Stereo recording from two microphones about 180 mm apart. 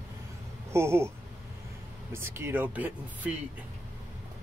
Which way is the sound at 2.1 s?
15° right (ahead or behind).